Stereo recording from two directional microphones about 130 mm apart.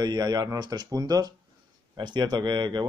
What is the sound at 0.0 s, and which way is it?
Speech, 30° right (ahead or behind).